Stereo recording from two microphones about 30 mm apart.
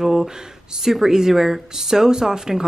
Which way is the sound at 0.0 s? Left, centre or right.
Centre.